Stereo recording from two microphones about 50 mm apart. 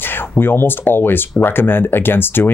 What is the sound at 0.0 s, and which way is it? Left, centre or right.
Speech, left.